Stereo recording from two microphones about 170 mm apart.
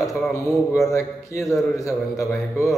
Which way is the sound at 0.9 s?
15° left (ahead or behind).